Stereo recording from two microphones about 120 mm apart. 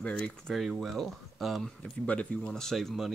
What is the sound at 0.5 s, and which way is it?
Speech, centre (ahead or behind).